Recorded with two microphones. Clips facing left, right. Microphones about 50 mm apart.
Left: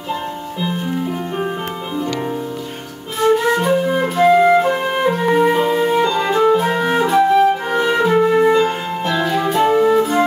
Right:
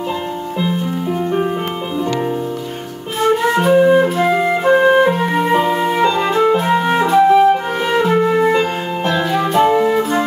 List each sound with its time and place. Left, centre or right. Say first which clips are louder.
0.6 s music: right 1 dB; centre
3.7 s flute: right 6 dB; centre
4.0 s flute: left 2 dB; centre
4.7 s music: right 6 dB; centre
6.1 s flute: even; centre
9.0 s music: right 1 dB; centre